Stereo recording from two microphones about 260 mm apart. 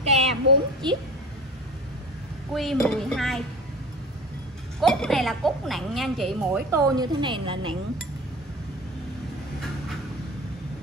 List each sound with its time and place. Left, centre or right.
0.0 s a sound: right
0.8 s a woman's voice: centre
2.5 s a woman's voice: centre
4.7 s a woman's voice: centre
6.7 s a woman's voice: centre